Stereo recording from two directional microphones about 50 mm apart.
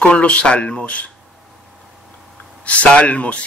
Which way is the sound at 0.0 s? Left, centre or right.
Left.